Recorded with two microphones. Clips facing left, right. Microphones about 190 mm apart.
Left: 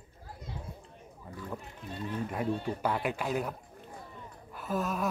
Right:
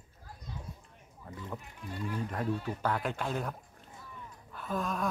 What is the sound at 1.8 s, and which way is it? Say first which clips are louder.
Speech: left 1 dB; 25° left (ahead or behind).